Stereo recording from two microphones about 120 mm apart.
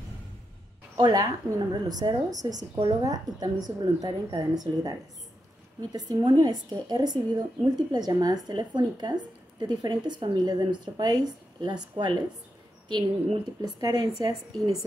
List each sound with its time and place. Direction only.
0.9 s speech: 30° right (ahead or behind)